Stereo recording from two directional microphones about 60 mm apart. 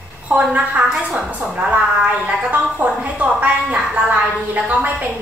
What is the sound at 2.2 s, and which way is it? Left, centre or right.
A woman's voice, right.